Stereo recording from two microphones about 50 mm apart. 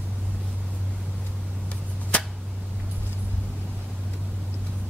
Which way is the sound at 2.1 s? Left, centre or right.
Left.